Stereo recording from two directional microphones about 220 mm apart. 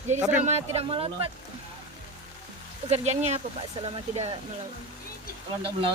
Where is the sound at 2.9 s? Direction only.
30° right (ahead or behind).